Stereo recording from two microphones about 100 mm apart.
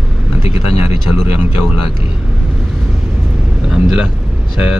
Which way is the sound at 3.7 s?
5° right (ahead or behind).